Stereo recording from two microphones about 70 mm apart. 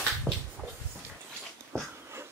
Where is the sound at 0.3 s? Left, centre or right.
Centre.